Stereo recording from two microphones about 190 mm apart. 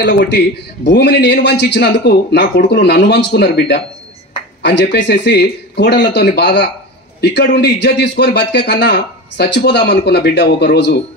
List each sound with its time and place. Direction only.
0.0 s a man's voice: 65° left (ahead or behind)